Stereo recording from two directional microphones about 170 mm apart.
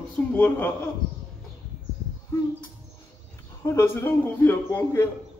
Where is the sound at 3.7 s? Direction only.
15° left (ahead or behind).